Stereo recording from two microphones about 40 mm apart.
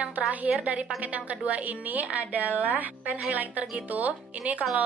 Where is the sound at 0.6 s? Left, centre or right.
Right.